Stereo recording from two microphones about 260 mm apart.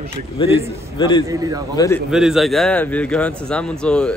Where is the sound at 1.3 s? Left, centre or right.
Centre.